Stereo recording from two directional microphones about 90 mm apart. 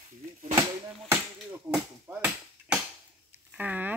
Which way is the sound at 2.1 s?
20° right (ahead or behind).